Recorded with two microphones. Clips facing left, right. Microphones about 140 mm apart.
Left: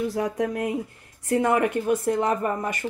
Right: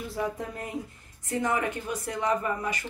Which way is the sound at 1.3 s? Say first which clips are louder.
Left 7 dB; 60° left (ahead or behind).